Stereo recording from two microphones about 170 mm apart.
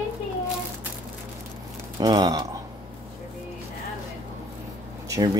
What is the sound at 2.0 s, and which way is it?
Speech, 25° right (ahead or behind).